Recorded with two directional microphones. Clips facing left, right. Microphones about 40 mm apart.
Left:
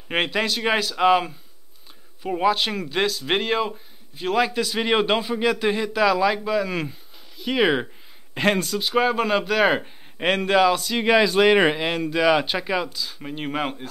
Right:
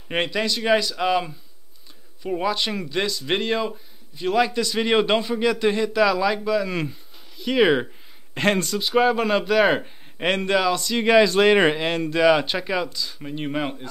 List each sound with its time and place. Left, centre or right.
0.1 s a man's voice: centre